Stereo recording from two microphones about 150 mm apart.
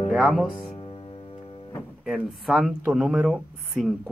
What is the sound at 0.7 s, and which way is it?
Music, 35° left (ahead or behind).